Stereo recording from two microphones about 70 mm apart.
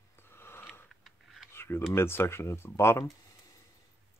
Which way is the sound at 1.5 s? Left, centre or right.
Left.